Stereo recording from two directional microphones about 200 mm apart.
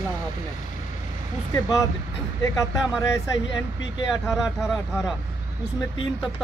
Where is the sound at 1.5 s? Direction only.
20° left (ahead or behind).